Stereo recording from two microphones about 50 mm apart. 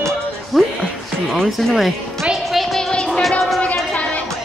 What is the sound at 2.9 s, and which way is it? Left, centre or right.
Music, centre.